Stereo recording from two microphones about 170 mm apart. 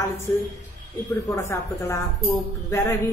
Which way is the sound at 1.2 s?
15° left (ahead or behind).